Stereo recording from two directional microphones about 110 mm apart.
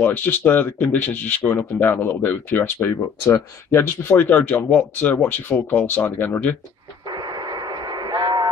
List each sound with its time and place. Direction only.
0.0 s speech: 15° left (ahead or behind)
7.1 s radio: 40° right (ahead or behind)